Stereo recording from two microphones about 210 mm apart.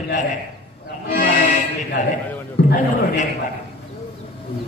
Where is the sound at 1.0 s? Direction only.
45° left (ahead or behind).